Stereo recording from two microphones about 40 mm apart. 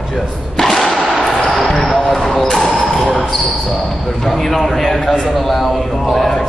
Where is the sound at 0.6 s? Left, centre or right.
Centre.